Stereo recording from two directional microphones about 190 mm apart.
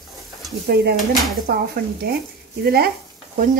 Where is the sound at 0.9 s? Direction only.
Centre (ahead or behind).